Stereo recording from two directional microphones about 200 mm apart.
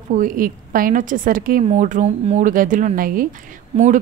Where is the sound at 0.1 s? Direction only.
40° right (ahead or behind).